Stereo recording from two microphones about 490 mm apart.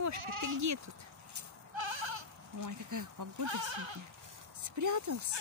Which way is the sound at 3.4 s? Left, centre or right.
Right.